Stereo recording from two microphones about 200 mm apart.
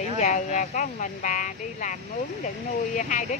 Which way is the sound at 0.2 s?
35° left (ahead or behind).